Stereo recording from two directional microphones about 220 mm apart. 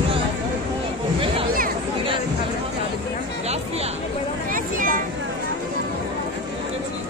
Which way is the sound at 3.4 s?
30° right (ahead or behind).